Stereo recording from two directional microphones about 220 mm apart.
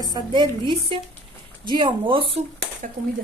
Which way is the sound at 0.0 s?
20° right (ahead or behind).